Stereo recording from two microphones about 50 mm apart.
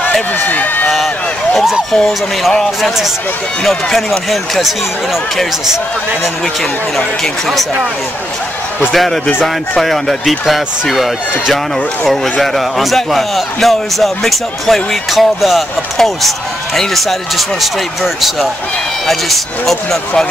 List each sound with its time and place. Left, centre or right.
0.5 s speech: left
0.9 s a sound: centre
3.6 s speech: centre
8.9 s speech: centre